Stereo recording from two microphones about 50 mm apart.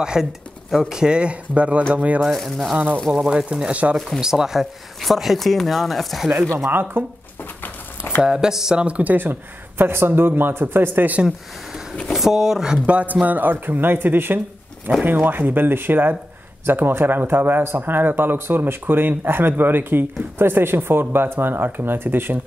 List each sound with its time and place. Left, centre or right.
0.0 s speech: centre; by 2.2 s right
2.2 s speech: centre
3.1 s speech: centre
4.2 s speech: centre
6.7 s speech: right
8.2 s speech: centre
8.8 s speech: right
9.1 s speech: right
12.1 s speech: centre
12.8 s speech: right